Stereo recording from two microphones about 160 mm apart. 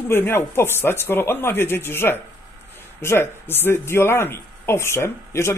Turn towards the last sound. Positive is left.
turn(degrees=15)  # may be behind; listen again after turning